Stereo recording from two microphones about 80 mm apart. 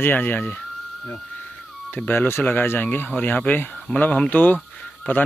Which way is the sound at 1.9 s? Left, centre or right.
Left.